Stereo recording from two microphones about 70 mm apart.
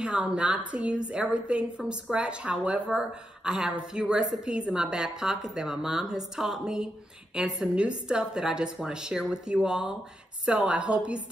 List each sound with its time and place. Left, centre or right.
0.0 s a woman's voice: centre